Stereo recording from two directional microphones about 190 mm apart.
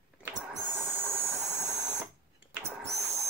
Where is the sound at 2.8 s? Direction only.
15° right (ahead or behind).